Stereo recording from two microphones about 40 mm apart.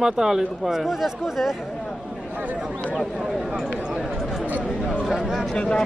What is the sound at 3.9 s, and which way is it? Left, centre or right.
Chatter, centre.